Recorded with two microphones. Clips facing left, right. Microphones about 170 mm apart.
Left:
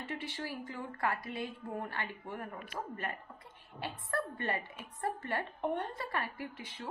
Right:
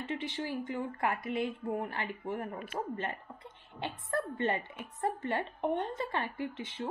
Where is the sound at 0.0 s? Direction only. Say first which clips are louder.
Right 4 dB; 20° right (ahead or behind).